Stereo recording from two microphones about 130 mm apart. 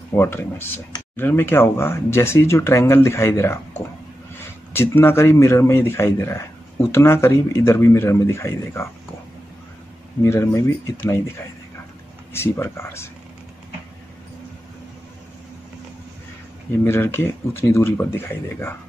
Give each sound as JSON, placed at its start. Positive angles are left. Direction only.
{"t": 0.1, "sound": "speech", "side_deg": 20}
{"t": 10.2, "sound": "speech", "side_deg": 20}
{"t": 12.3, "sound": "speech", "side_deg": 20}
{"t": 16.8, "sound": "speech", "side_deg": 20}